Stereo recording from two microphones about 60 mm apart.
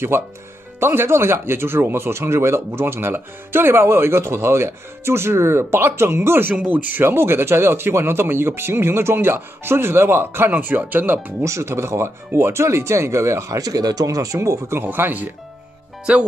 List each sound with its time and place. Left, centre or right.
0.1 s speech: right
11.4 s speech: right
13.6 s speech: right
14.8 s speech: right
16.1 s speech: right